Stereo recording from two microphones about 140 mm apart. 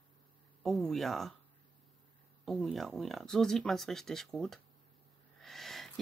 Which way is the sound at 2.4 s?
Centre (ahead or behind).